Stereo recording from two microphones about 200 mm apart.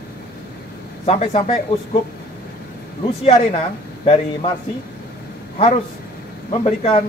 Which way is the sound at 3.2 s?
30° left (ahead or behind).